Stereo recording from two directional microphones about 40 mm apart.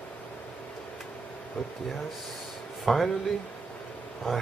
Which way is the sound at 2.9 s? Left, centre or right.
Centre.